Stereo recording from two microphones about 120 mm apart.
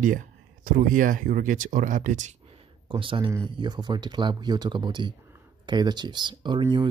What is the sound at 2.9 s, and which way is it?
Speech, 45° right (ahead or behind).